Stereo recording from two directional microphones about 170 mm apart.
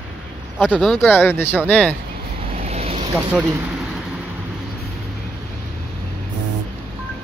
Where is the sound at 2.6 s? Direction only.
40° right (ahead or behind).